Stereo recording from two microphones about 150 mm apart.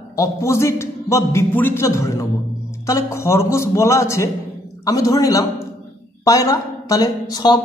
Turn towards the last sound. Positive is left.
turn(degrees=25)  # may be behind; listen again after turning